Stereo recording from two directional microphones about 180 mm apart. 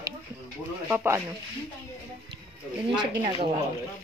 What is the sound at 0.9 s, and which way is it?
Speech, 10° right (ahead or behind).